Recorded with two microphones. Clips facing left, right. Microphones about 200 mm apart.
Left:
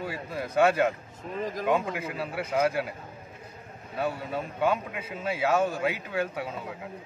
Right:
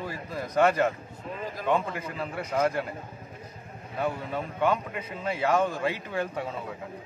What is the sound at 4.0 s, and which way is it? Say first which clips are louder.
A man's voice: even; 5° left (ahead or behind).